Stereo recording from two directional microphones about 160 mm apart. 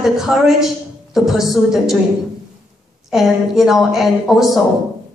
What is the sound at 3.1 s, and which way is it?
A woman's voice, centre (ahead or behind).